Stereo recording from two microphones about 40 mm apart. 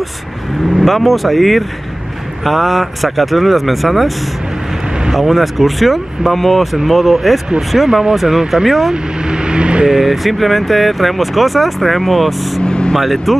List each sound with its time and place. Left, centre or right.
0.7 s speech: centre
5.1 s speech: centre
7.9 s speech: centre
8.9 s vehicle: right
9.8 s speech: centre
12.6 s vehicle: left
12.9 s speech: centre